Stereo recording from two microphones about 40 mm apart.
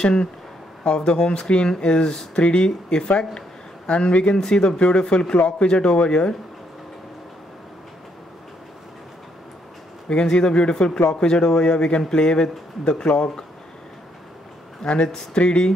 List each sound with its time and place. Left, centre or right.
0.0 s speech: left
10.3 s speech: left
15.0 s speech: left